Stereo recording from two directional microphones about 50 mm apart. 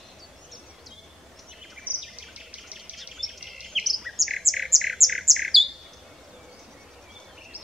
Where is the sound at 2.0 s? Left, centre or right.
Centre.